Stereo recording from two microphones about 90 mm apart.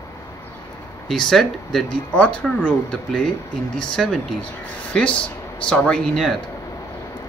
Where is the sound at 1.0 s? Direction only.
5° left (ahead or behind).